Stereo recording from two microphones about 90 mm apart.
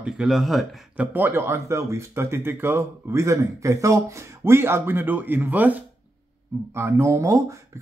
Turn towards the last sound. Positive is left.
turn(degrees=-35)  # may be behind; listen again after turning